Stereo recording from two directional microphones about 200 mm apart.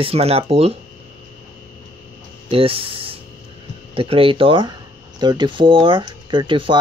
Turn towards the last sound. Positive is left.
turn(degrees=-25)  # may be behind; listen again after turning